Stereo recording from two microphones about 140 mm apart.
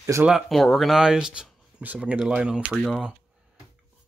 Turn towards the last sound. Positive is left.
turn(degrees=0)  # may be behind; listen again after turning